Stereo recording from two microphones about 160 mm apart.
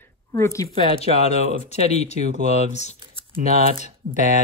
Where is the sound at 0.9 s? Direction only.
40° left (ahead or behind).